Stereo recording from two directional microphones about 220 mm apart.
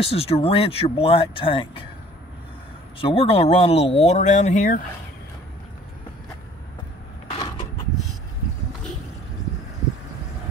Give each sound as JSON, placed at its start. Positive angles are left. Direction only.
{"t": 0.0, "sound": "speech", "side_deg": 25}
{"t": 3.0, "sound": "speech", "side_deg": 25}